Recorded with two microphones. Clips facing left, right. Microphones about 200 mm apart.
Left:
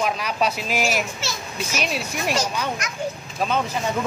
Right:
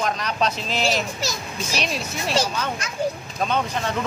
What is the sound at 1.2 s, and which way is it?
Speech, 40° right (ahead or behind).